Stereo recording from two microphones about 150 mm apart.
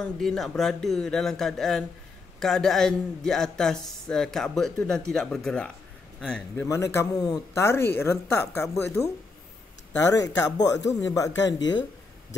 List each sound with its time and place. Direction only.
0.0 s speech: centre (ahead or behind)
6.7 s speech: 20° left (ahead or behind)
10.1 s speech: 25° left (ahead or behind)